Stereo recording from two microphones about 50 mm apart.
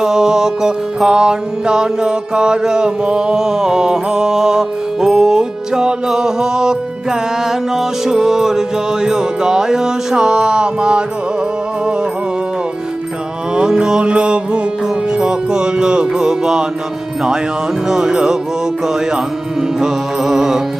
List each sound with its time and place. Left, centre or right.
0.0 s music: centre
13.6 s mantra: centre
15.1 s music: centre
17.8 s music: centre
19.8 s music: centre